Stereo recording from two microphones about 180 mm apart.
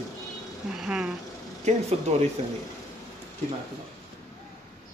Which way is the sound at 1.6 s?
40° right (ahead or behind).